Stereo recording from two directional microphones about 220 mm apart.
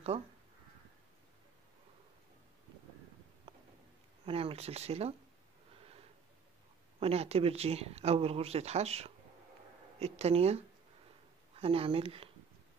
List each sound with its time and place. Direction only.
4.3 s speech: 25° right (ahead or behind)
7.0 s speech: 30° right (ahead or behind)